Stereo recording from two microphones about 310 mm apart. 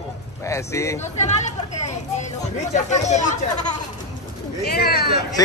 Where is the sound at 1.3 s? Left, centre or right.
Left.